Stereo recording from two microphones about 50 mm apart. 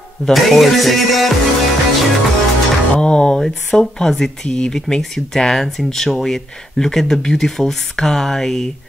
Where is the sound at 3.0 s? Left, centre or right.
Centre.